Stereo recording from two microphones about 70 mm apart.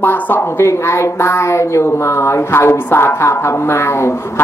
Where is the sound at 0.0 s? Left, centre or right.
Left.